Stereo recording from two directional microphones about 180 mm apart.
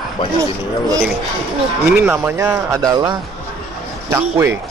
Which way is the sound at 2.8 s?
20° right (ahead or behind).